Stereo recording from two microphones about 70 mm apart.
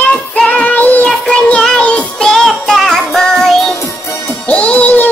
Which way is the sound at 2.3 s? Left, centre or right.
Centre.